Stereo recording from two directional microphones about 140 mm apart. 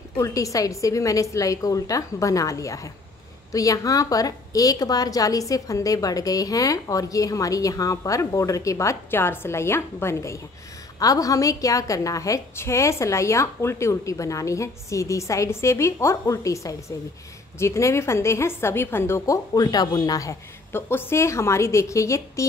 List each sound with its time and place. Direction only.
0.2 s a woman's voice: 25° left (ahead or behind)